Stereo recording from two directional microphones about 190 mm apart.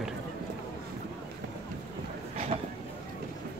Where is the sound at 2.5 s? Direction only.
35° right (ahead or behind).